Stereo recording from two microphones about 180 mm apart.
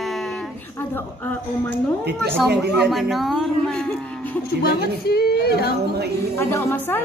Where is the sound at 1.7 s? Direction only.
65° right (ahead or behind).